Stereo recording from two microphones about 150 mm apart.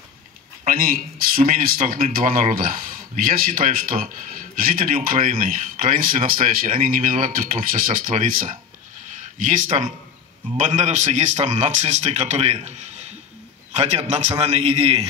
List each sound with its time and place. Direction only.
0.7 s speech: 70° right (ahead or behind); by 15.0 s 45° right (ahead or behind)